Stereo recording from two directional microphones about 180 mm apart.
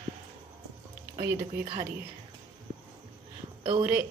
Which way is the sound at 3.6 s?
45° right (ahead or behind).